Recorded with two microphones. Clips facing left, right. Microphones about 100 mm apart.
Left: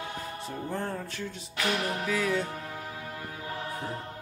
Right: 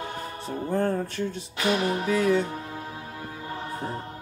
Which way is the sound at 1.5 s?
20° right (ahead or behind).